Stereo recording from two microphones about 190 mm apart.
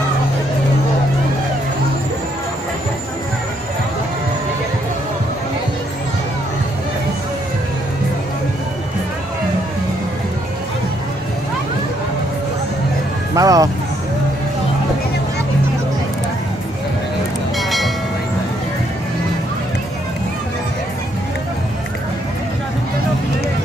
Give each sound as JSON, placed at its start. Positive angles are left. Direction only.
{"t": 13.3, "sound": "music", "side_deg": -20}
{"t": 17.6, "sound": "train", "side_deg": 0}